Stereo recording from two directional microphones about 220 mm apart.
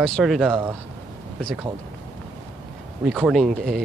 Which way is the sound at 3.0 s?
5° right (ahead or behind).